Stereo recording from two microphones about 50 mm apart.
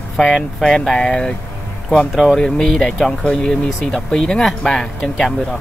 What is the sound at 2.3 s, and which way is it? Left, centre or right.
Speech, centre.